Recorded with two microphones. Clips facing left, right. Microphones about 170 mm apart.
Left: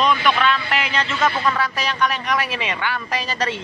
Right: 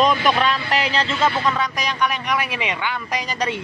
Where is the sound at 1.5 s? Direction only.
15° right (ahead or behind).